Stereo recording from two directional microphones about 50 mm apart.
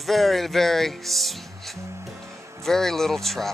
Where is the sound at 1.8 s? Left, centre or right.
Right.